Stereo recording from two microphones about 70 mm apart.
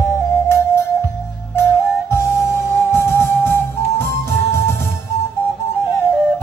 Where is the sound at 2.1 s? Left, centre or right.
Left.